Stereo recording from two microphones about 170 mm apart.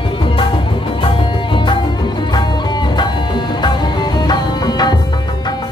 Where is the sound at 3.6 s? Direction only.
25° left (ahead or behind).